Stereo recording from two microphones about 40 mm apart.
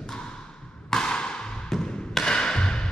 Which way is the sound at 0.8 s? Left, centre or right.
Centre.